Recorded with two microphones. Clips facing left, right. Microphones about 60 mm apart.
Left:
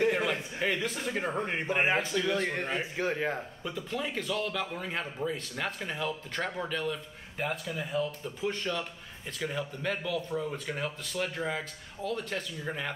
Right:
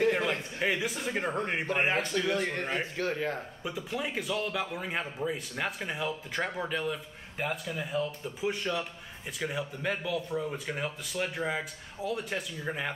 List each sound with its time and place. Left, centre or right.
0.0 s a sound: centre
0.6 s speech: centre
1.7 s a man's voice: centre
2.8 s speech: centre
3.6 s speech: centre